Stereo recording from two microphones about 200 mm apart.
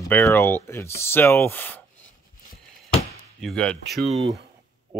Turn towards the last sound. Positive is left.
turn(degrees=-30)  # may be behind; listen again after turning